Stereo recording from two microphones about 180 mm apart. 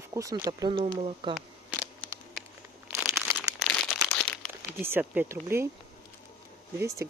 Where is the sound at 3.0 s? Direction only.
10° right (ahead or behind).